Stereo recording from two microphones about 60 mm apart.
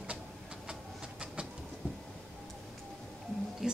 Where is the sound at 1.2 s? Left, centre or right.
Centre.